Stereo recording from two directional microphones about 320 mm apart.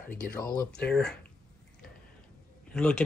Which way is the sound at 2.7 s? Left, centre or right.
Centre.